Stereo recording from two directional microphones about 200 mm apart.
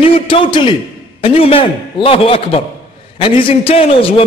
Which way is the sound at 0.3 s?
25° left (ahead or behind).